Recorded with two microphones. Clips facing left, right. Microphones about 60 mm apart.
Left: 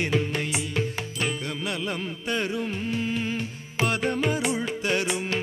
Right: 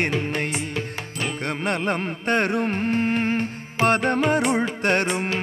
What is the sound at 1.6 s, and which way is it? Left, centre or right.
Music, right.